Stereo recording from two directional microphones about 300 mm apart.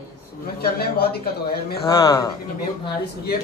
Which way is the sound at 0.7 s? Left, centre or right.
Left.